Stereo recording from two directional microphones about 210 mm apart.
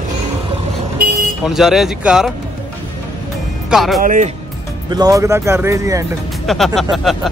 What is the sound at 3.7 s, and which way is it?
Speech, centre (ahead or behind).